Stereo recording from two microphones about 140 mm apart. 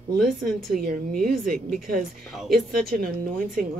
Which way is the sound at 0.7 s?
90° right.